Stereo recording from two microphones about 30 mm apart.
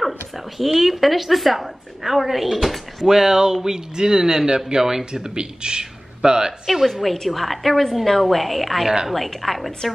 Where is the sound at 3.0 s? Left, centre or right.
Centre.